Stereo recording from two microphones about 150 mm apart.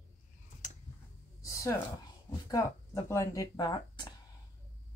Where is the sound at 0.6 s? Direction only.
55° left (ahead or behind).